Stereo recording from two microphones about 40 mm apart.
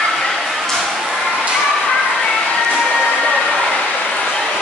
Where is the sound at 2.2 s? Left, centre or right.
Left.